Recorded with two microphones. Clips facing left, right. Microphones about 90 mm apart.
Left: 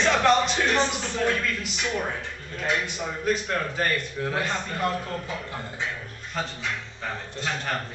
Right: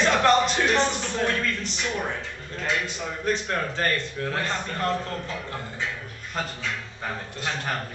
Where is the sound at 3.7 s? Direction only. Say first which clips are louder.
Even; 10° left (ahead or behind).